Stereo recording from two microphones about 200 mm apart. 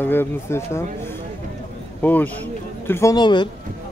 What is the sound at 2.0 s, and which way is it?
A man's voice, 10° left (ahead or behind).